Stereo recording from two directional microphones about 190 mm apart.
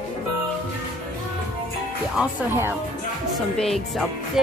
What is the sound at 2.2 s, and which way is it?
Speech, 10° right (ahead or behind).